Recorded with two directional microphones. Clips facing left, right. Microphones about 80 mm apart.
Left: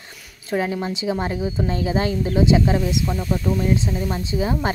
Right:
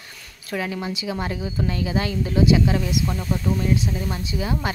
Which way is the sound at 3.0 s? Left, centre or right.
Centre.